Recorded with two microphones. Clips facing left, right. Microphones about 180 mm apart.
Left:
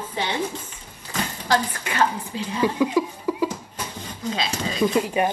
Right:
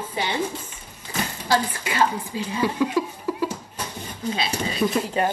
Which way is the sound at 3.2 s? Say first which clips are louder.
Left 2 dB; 15° left (ahead or behind).